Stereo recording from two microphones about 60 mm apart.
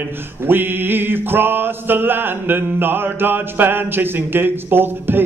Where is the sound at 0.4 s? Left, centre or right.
Right.